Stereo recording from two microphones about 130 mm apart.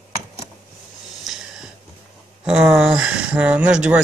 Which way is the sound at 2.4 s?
5° right (ahead or behind).